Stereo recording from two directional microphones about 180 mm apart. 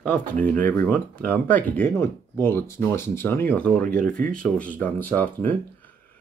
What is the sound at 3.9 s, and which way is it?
Speech, 50° right (ahead or behind).